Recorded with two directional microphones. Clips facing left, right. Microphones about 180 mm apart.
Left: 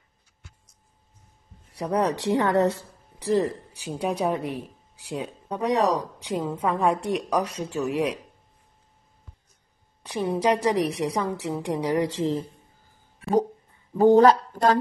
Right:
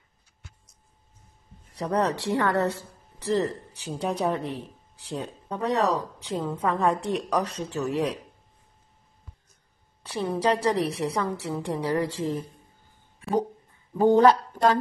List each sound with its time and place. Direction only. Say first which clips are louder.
1.7 s a woman's voice: left 1 dB; 10° left (ahead or behind)
10.0 s a woman's voice: left 2 dB; 15° left (ahead or behind)
13.9 s speech: left 2 dB; 40° left (ahead or behind)